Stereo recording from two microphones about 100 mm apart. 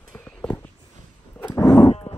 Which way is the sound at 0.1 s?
15° left (ahead or behind).